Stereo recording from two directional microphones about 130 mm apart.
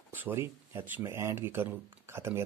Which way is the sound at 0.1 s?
15° right (ahead or behind).